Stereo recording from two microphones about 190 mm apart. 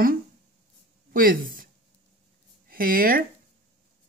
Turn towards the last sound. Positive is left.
turn(degrees=-50)  # may be behind; listen again after turning